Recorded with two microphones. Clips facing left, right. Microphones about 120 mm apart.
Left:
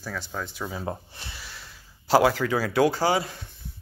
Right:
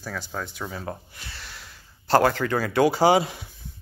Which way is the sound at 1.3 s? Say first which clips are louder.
Even; centre (ahead or behind).